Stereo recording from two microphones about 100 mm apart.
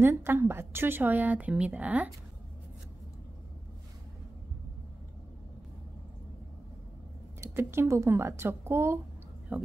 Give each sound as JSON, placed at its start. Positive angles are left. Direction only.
{"t": 0.0, "sound": "a woman's voice", "side_deg": -20}
{"t": 7.3, "sound": "speech", "side_deg": -30}
{"t": 9.5, "sound": "a woman's voice", "side_deg": -15}